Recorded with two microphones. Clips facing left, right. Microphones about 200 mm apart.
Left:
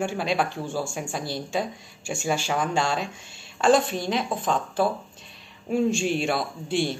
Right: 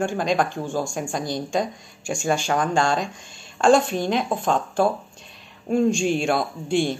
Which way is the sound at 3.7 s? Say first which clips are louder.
Right 3 dB; 45° right (ahead or behind).